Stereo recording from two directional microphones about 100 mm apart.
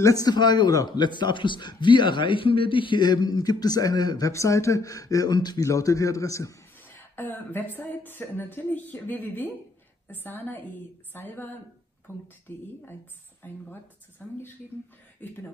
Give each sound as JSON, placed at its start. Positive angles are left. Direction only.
{"t": 0.0, "sound": "a man's voice", "side_deg": 40}
{"t": 4.3, "sound": "speech", "side_deg": 30}
{"t": 5.7, "sound": "speech", "side_deg": 35}
{"t": 6.8, "sound": "speech", "side_deg": 20}